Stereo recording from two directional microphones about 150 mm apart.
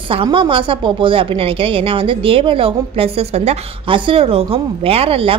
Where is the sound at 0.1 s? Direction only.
35° right (ahead or behind).